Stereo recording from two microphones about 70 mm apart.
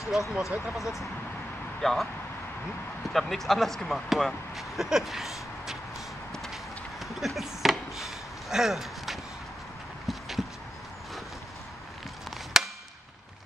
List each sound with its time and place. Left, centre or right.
0.1 s speech: centre
3.1 s speech: centre
7.2 s a sound: centre
12.6 s chop: centre